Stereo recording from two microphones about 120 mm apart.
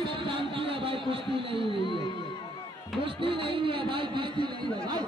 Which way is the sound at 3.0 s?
50° right (ahead or behind).